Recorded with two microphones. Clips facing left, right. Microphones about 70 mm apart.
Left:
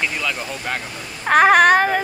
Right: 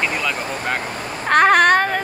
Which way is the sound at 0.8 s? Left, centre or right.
Right.